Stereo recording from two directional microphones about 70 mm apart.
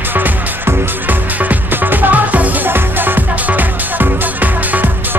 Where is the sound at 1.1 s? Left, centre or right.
Right.